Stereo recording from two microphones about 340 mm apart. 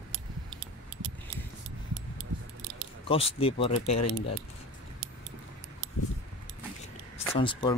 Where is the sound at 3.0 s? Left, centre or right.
Centre.